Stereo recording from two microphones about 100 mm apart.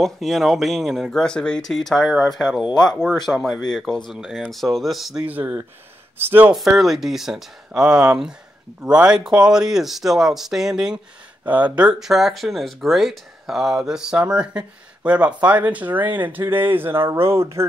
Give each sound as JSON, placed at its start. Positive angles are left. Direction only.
{"t": 0.0, "sound": "speech", "side_deg": 0}
{"t": 2.6, "sound": "speech", "side_deg": 45}
{"t": 3.3, "sound": "speech", "side_deg": 5}
{"t": 5.2, "sound": "speech", "side_deg": -15}
{"t": 6.5, "sound": "speech", "side_deg": 0}